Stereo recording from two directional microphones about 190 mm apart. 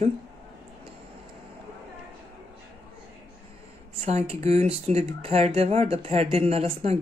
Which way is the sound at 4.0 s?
35° right (ahead or behind).